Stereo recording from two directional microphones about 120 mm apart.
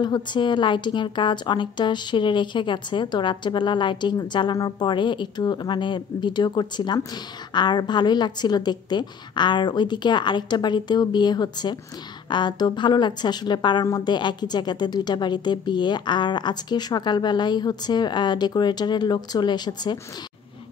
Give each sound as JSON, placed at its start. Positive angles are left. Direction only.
{"t": 0.0, "sound": "a woman's voice", "side_deg": 40}